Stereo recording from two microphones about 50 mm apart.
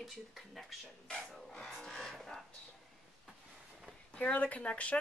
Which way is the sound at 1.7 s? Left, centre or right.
Centre.